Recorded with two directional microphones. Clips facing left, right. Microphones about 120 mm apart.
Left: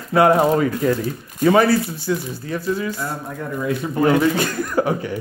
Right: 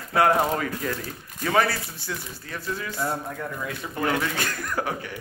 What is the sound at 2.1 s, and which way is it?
Speech, 20° left (ahead or behind).